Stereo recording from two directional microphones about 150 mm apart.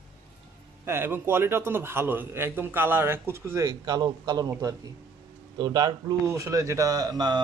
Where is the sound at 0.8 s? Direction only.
15° right (ahead or behind).